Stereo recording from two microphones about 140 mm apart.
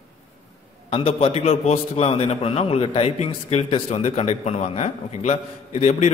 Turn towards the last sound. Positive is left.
turn(degrees=55)  # may be behind; listen again after turning